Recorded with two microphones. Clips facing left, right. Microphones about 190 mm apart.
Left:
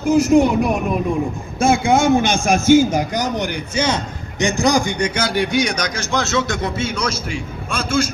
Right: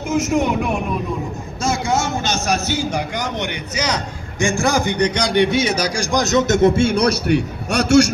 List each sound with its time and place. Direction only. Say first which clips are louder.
0.0 s speech: left 5 dB; 35° left (ahead or behind)
1.6 s a man's voice: left 5 dB; 55° left (ahead or behind); by 3.4 s 40° left (ahead or behind)
3.5 s a man's voice: left 3 dB; 30° left (ahead or behind); by 5.9 s 5° right (ahead or behind)
5.9 s a man's voice: right 4 dB; 15° right (ahead or behind)
6.7 s a man's voice: right 7 dB; 55° right (ahead or behind); by 8.1 s 75° right (ahead or behind)